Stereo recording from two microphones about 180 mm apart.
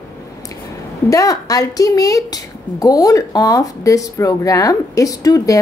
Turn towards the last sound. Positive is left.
turn(degrees=20)  # may be behind; listen again after turning